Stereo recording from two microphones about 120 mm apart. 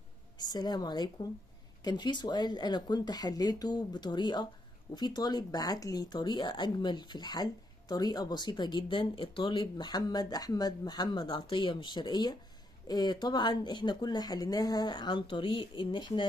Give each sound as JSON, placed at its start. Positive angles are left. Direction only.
{"t": 0.4, "sound": "a woman's voice", "side_deg": 35}